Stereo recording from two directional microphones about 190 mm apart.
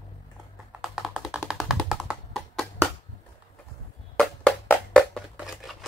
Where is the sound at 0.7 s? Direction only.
Centre (ahead or behind).